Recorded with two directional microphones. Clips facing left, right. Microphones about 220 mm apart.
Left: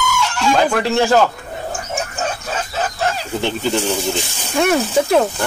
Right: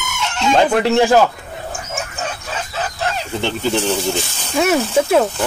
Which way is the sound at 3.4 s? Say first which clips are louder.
Right 1 dB; 5° left (ahead or behind).